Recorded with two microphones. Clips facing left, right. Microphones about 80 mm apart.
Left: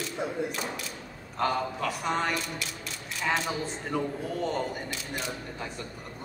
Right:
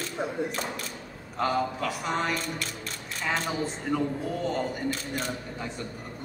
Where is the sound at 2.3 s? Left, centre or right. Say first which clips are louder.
Right 1 dB; right.